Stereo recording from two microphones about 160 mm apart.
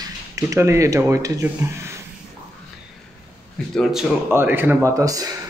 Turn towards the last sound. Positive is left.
turn(degrees=-20)  # may be behind; listen again after turning